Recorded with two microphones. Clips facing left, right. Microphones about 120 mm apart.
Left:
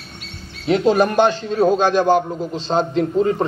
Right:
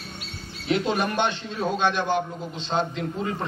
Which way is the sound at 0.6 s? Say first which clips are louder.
Left 9 dB; 35° left (ahead or behind).